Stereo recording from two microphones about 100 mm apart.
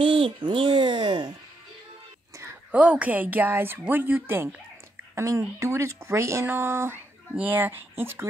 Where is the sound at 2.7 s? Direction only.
15° right (ahead or behind).